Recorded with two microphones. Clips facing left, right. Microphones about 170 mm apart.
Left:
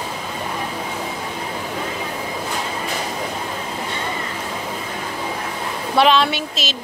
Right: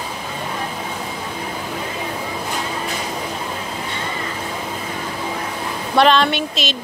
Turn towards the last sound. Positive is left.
turn(degrees=5)  # may be behind; listen again after turning